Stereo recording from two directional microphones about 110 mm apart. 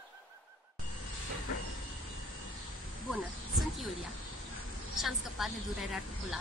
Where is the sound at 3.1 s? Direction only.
Centre (ahead or behind).